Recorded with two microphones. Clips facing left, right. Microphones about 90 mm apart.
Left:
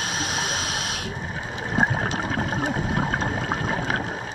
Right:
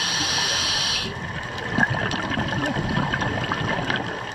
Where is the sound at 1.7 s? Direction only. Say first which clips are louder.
Even; centre (ahead or behind).